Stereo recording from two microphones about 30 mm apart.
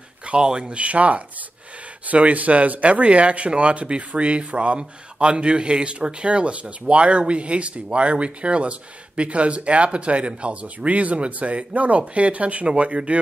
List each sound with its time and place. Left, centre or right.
0.3 s speech: right
0.7 s speech: right